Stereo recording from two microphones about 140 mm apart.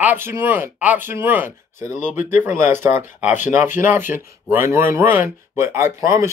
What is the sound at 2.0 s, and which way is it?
Speech, 65° left (ahead or behind).